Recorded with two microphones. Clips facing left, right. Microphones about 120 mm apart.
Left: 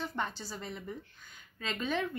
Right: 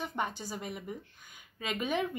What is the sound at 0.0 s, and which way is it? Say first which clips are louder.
Speech: right 1 dB; 15° right (ahead or behind).